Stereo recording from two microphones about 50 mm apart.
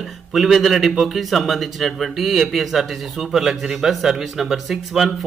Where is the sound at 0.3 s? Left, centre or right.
Centre.